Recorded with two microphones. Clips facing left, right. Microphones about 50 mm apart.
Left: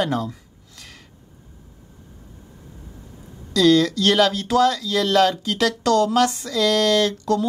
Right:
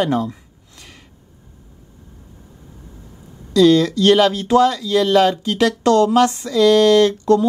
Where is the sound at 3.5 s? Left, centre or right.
Right.